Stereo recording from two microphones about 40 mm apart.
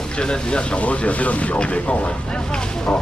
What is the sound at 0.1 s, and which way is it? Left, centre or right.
Speech, left.